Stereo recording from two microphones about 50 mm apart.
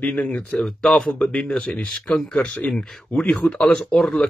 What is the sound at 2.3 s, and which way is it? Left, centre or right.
Speech, centre.